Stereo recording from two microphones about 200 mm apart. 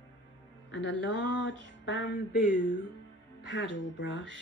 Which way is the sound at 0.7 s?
65° left (ahead or behind).